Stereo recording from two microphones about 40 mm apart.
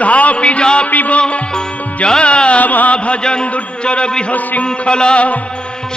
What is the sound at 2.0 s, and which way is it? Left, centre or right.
Music, left.